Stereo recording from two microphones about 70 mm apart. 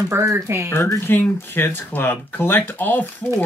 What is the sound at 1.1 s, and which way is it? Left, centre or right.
Speech, left.